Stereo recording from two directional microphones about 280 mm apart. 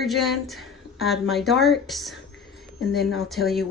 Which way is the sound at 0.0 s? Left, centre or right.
Centre.